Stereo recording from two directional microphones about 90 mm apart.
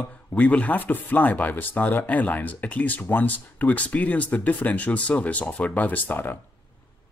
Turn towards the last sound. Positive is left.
turn(degrees=20)  # may be behind; listen again after turning